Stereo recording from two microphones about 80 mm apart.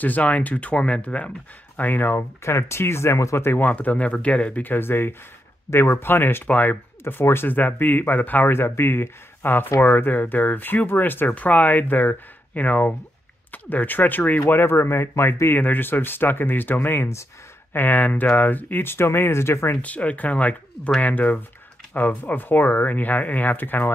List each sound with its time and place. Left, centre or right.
0.0 s speech: centre
19.8 s speech: centre